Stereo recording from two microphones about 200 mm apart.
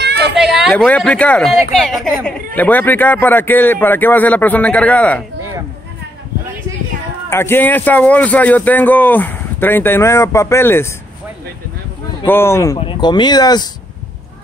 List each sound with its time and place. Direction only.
0.0 s a sound: 55° right (ahead or behind)
0.4 s a man's voice: centre (ahead or behind)
7.2 s a man's voice: 10° left (ahead or behind)
12.3 s a man's voice: 10° left (ahead or behind)
12.7 s speech: 25° left (ahead or behind)